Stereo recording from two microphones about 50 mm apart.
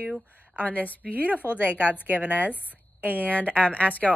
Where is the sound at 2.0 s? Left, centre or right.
Right.